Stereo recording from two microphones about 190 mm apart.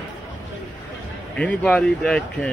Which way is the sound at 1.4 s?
5° left (ahead or behind).